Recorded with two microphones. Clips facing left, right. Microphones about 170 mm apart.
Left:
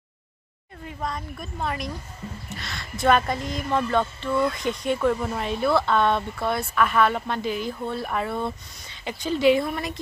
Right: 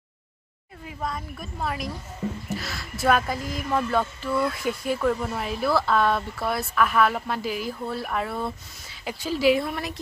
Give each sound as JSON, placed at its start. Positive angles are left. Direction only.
{"t": 0.8, "sound": "speech", "side_deg": -5}